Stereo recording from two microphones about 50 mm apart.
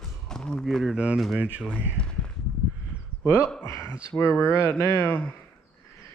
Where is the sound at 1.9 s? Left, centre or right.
Left.